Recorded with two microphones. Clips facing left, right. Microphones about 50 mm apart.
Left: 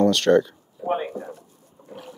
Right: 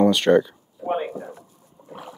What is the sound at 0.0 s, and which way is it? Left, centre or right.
Speech, centre.